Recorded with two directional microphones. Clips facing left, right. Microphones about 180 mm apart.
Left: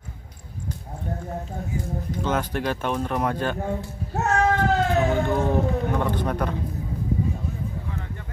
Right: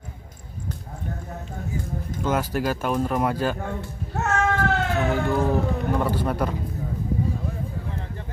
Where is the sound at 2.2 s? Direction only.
5° right (ahead or behind).